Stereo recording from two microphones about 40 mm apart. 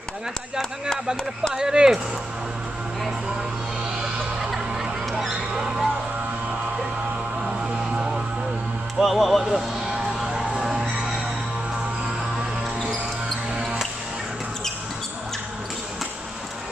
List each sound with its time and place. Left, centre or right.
1.5 s speech: centre
4.4 s music: centre
5.5 s music: right
7.4 s vehicle: right
8.9 s music: centre